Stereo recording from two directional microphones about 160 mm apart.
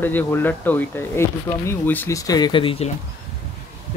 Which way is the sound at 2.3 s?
30° left (ahead or behind).